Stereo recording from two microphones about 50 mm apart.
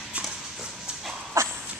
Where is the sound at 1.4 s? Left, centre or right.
Right.